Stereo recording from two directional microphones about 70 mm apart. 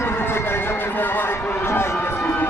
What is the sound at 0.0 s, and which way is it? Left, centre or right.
Run, left.